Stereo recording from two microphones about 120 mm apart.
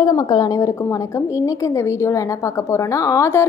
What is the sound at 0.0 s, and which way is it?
A woman's voice, 30° left (ahead or behind).